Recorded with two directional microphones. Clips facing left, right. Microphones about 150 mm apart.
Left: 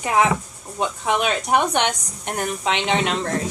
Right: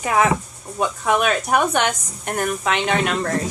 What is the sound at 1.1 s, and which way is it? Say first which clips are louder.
Speech: right 1 dB; 20° left (ahead or behind).